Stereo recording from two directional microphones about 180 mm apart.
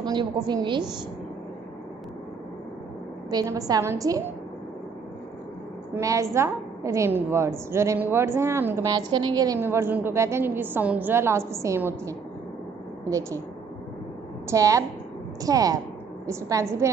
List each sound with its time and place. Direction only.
0.0 s a woman's voice: 25° right (ahead or behind)
3.3 s a woman's voice: 20° right (ahead or behind)
5.9 s a woman's voice: 15° right (ahead or behind)
14.5 s a woman's voice: 15° right (ahead or behind)